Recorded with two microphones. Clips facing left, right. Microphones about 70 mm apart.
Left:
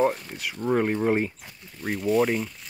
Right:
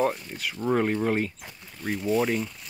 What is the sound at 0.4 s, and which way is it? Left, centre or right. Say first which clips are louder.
Speech: left 1 dB; centre.